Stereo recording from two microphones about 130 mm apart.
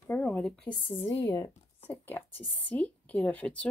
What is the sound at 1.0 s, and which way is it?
A woman's voice, 20° left (ahead or behind).